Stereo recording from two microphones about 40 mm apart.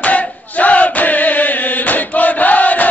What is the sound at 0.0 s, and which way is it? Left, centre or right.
Choir, left.